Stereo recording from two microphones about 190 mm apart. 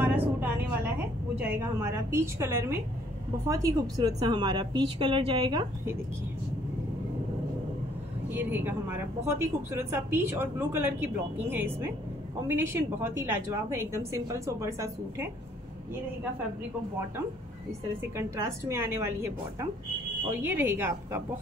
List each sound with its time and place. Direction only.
0.0 s a sound: 10° right (ahead or behind)
3.4 s a woman's voice: 15° right (ahead or behind)
8.3 s a woman's voice: 10° right (ahead or behind)
18.1 s a woman's voice: 15° right (ahead or behind)